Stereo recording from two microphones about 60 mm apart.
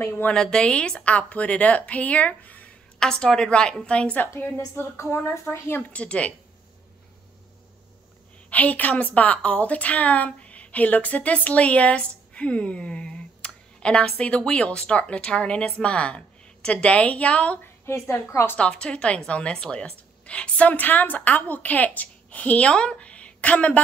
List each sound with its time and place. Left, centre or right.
0.3 s a woman's voice: centre
3.0 s a woman's voice: centre
4.3 s a woman's voice: left
4.7 s a woman's voice: left
5.9 s a woman's voice: centre
8.5 s a woman's voice: left
17.8 s a woman's voice: left
18.6 s a woman's voice: centre